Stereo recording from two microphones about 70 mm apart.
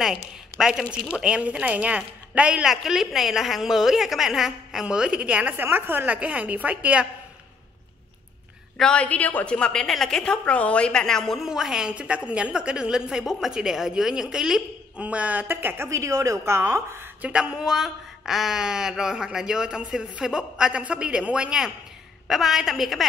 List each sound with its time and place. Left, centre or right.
0.0 s speech: centre
2.7 s a woman's voice: centre
5.6 s a woman's voice: right
8.9 s a woman's voice: centre
11.4 s speech: centre
15.0 s a woman's voice: centre
15.4 s speech: right
15.9 s a woman's voice: right
17.2 s a woman's voice: centre